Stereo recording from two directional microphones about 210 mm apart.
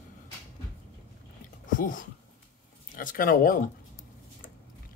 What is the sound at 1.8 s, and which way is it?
Speech, 40° left (ahead or behind).